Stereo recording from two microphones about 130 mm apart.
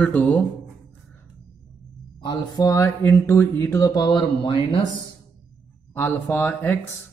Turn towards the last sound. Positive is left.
turn(degrees=15)  # may be behind; listen again after turning